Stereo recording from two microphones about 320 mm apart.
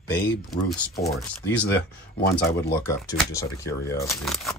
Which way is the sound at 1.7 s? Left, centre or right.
Left.